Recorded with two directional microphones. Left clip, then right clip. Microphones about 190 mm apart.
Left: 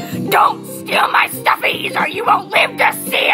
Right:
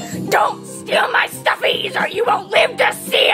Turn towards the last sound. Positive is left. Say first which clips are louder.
# even
turn(degrees=0)  # may be behind; listen again after turning